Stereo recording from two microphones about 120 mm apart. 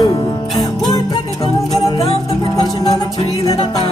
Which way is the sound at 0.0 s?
30° left (ahead or behind).